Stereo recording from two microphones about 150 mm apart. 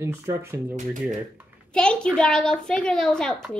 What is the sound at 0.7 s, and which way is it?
Speech, 55° right (ahead or behind).